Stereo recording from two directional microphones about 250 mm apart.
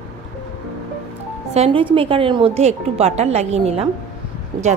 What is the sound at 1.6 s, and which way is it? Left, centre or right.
Speech, right.